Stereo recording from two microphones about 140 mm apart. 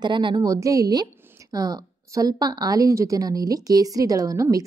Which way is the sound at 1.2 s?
15° right (ahead or behind).